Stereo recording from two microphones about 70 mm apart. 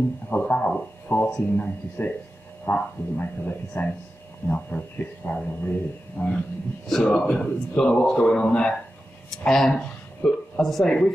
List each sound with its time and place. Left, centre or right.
0.3 s a man's voice: centre